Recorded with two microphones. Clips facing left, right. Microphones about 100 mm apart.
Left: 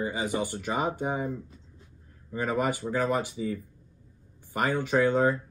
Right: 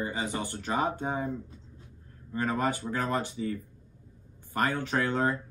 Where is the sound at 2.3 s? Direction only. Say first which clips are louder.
Left 1 dB; 15° left (ahead or behind).